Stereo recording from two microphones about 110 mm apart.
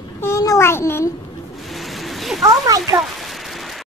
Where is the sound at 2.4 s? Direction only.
30° right (ahead or behind).